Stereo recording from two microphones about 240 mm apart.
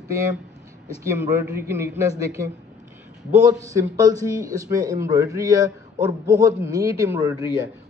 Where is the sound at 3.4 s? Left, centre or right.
Centre.